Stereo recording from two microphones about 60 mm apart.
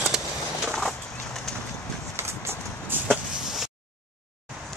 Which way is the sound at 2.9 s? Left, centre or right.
Right.